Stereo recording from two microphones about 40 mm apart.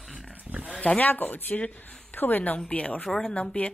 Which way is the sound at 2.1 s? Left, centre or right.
Left.